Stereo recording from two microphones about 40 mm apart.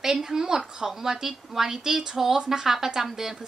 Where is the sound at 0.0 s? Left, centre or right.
Centre.